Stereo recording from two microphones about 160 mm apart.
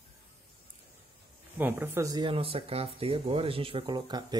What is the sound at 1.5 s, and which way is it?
Speech, 10° right (ahead or behind).